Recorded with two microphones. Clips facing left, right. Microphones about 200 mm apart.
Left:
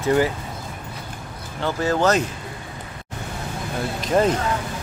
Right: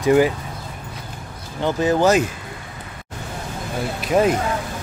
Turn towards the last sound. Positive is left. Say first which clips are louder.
# right 1 dB
turn(degrees=-10)  # may be behind; listen again after turning